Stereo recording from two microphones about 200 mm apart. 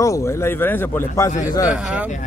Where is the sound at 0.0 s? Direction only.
15° left (ahead or behind).